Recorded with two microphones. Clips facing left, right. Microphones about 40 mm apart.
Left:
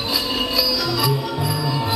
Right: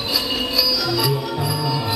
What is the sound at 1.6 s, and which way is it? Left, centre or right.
Music, left.